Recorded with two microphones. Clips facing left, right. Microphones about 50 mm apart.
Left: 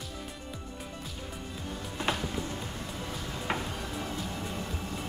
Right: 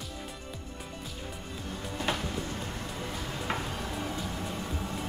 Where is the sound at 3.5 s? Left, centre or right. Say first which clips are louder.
Left 1 dB; centre.